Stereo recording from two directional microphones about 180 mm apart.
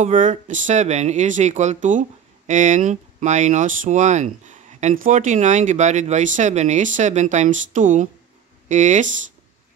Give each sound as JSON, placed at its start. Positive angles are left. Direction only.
{"t": 0.0, "sound": "speech", "side_deg": -45}